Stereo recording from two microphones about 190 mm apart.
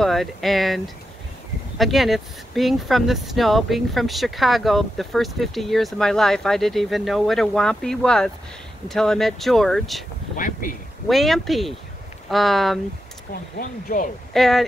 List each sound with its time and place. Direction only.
0.0 s speech: centre (ahead or behind)
10.3 s speech: 45° left (ahead or behind)
11.1 s speech: centre (ahead or behind)
13.3 s speech: 45° left (ahead or behind)
14.3 s speech: centre (ahead or behind)